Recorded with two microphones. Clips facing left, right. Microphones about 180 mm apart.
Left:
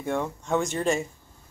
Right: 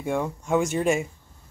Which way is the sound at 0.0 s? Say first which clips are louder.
Right 2 dB; 10° right (ahead or behind).